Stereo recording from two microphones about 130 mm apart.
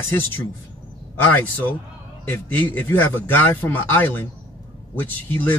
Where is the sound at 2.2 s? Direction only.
15° left (ahead or behind).